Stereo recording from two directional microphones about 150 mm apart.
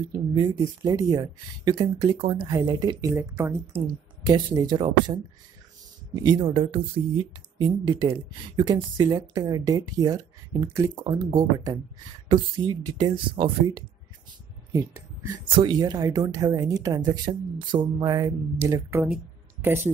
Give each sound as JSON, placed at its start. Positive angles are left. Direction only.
{"t": 0.3, "sound": "a woman's voice", "side_deg": -25}
{"t": 3.8, "sound": "a woman's voice", "side_deg": -30}
{"t": 14.7, "sound": "a woman's voice", "side_deg": -20}